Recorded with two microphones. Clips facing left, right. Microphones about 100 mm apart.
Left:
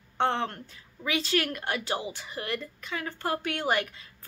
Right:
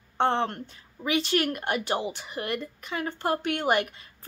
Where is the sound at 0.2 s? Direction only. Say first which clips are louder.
Right 3 dB; 25° right (ahead or behind).